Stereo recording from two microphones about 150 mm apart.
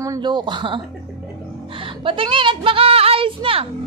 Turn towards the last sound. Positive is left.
turn(degrees=-35)  # may be behind; listen again after turning